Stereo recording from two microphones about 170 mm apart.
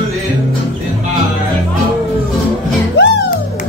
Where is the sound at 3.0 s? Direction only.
80° left.